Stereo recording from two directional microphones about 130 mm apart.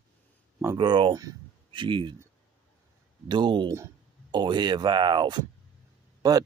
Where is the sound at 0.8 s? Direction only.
35° right (ahead or behind).